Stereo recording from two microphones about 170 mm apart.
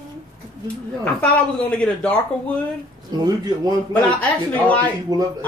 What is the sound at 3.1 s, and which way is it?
Speech, 25° right (ahead or behind).